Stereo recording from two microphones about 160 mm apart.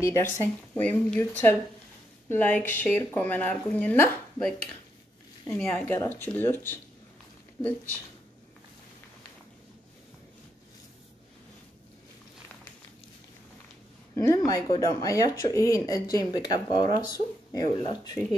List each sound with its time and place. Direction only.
0.0 s speech: 15° left (ahead or behind)
5.5 s speech: 10° left (ahead or behind)
14.1 s speech: 20° left (ahead or behind)